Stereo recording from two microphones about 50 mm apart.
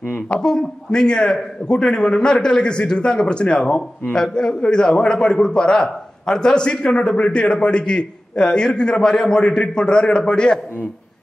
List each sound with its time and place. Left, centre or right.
0.1 s a man's voice: centre